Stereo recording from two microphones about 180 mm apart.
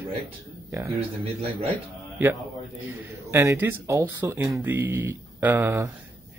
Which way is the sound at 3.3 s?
15° right (ahead or behind).